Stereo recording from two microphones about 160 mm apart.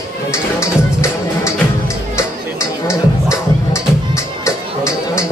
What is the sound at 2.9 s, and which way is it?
Music, 20° left (ahead or behind).